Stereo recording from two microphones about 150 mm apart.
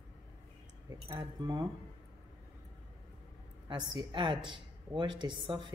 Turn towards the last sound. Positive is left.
turn(degrees=-30)  # may be behind; listen again after turning